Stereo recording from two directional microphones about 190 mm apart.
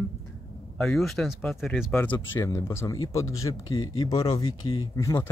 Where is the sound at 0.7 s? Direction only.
5° left (ahead or behind).